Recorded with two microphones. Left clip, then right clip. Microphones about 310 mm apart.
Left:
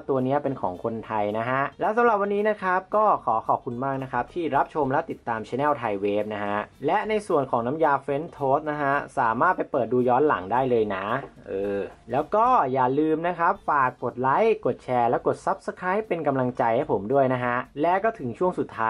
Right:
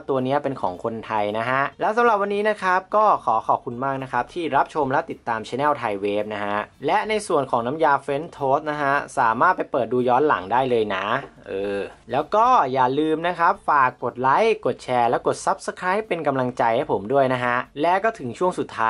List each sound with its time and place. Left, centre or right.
0.2 s speech: centre
0.6 s speech: centre
1.1 s speech: centre
8.4 s speech: centre
8.6 s speech: centre